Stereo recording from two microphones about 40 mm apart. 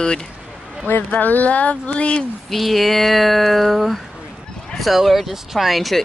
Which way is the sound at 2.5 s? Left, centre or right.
Centre.